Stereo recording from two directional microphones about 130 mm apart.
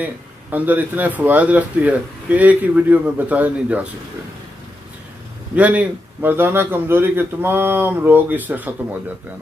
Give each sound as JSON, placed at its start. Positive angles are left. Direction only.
{"t": 0.0, "sound": "speech", "side_deg": -15}
{"t": 5.6, "sound": "speech", "side_deg": -10}